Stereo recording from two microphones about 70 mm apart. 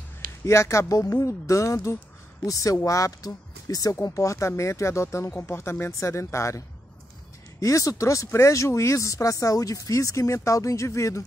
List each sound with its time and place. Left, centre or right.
0.5 s speech: left
7.6 s speech: left